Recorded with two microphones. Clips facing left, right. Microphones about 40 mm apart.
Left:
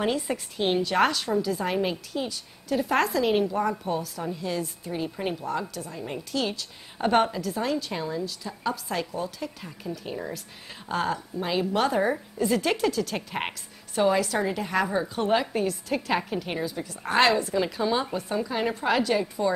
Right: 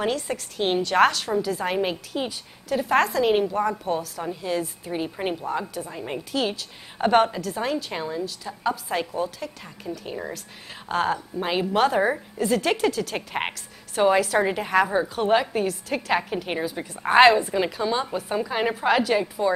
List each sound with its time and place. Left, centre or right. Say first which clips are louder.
0.0 s a woman's voice: right 1 dB; centre
1.8 s a woman's voice: right 2 dB; right
2.7 s a woman's voice: right 3 dB; centre
4.2 s a woman's voice: right 3 dB; centre
9.4 s a woman's voice: even; centre; by 11.7 s right
11.7 s a woman's voice: right 4 dB; centre
14.4 s a woman's voice: right 4 dB; right
15.2 s a woman's voice: right 3 dB; centre
17.6 s a woman's voice: right 1 dB; centre
18.3 s a woman's voice: right 3 dB; right
18.8 s a woman's voice: right 3 dB; centre